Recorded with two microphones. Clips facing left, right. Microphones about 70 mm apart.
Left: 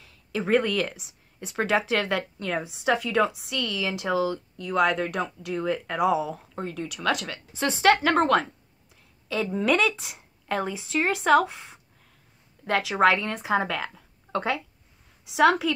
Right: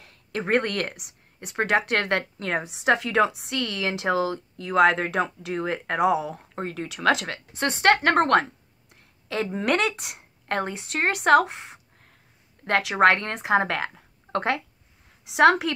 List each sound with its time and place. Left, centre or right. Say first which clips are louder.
0.4 s speech: left 1 dB; right
6.5 s speech: right 1 dB; right
7.5 s a woman's voice: even; right
9.6 s speech: left 1 dB; right
12.6 s speech: right 2 dB; right
13.8 s a sound: right 3 dB; right
15.2 s speech: right 2 dB; right